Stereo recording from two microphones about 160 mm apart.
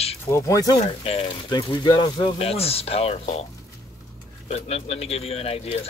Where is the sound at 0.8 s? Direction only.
40° left (ahead or behind).